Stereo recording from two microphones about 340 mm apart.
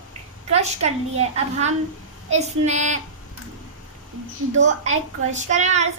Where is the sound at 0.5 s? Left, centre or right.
Centre.